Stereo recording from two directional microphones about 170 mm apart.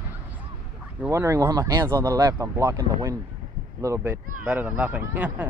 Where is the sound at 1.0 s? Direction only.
15° right (ahead or behind).